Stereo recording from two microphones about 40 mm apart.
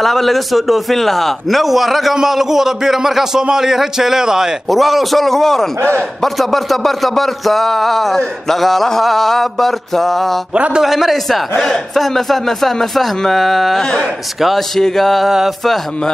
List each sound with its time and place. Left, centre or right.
0.0 s a man's voice: centre
4.6 s a man's voice: centre
5.8 s a man's voice: right
6.2 s a man's voice: centre
10.5 s a man's voice: right
10.8 s a man's voice: centre
11.5 s a man's voice: centre
15.2 s a man's voice: centre